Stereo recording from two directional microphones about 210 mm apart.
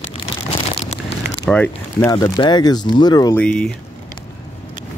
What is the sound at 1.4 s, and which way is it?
Speech, 10° left (ahead or behind).